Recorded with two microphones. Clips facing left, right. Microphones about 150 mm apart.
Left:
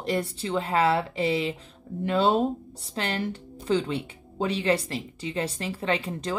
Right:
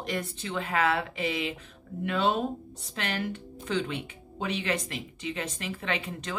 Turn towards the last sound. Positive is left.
turn(degrees=30)  # may be behind; listen again after turning